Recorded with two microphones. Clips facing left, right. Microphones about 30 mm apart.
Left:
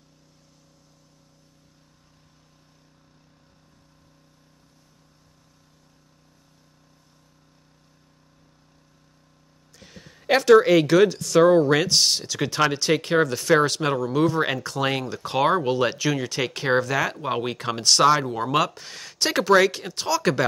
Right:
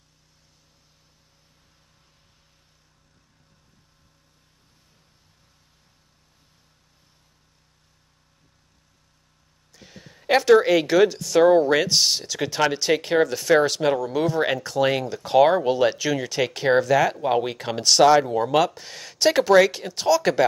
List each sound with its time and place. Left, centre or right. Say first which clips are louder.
9.8 s speech: even; centre